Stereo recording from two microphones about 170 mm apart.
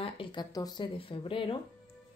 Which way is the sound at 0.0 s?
30° left (ahead or behind).